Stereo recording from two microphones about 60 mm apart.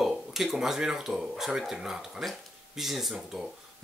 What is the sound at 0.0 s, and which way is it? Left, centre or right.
Speech, centre.